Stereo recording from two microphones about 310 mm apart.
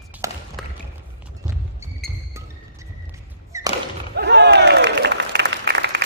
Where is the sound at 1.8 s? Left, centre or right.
Centre.